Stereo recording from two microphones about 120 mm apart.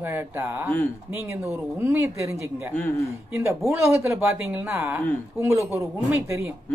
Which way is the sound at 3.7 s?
20° right (ahead or behind).